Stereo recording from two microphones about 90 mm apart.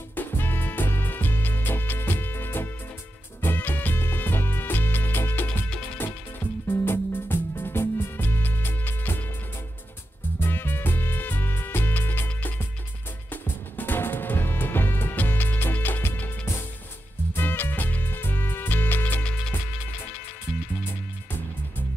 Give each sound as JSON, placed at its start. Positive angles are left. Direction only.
{"t": 0.1, "sound": "music", "side_deg": 20}
{"t": 10.4, "sound": "music", "side_deg": 25}